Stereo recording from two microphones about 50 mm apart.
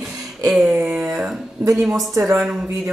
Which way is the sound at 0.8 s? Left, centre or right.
Right.